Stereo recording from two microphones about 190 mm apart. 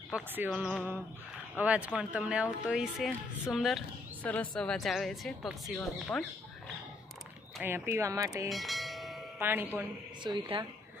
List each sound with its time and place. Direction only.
0.1 s a woman's voice: 5° right (ahead or behind)
7.6 s speech: 10° right (ahead or behind)
8.5 s church bell: centre (ahead or behind)
9.4 s speech: 10° right (ahead or behind)
10.2 s speech: 25° right (ahead or behind)